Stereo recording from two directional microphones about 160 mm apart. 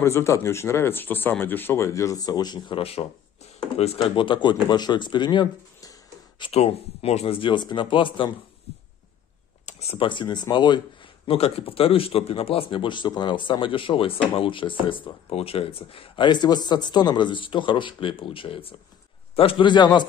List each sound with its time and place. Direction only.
0.0 s speech: 15° left (ahead or behind)
6.4 s speech: 40° left (ahead or behind)
9.7 s speech: 40° left (ahead or behind)